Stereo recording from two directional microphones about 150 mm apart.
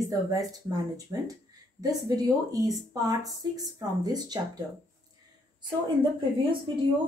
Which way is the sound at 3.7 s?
25° right (ahead or behind).